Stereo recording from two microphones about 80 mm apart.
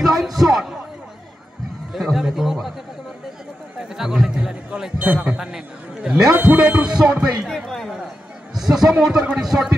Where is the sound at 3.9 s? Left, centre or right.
Centre.